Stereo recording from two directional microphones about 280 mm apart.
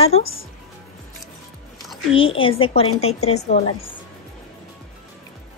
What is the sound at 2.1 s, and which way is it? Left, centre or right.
A woman's voice, centre.